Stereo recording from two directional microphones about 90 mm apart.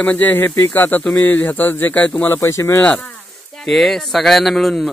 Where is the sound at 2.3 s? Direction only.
35° left (ahead or behind).